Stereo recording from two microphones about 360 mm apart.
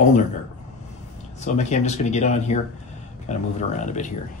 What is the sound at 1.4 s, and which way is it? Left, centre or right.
Speech, centre.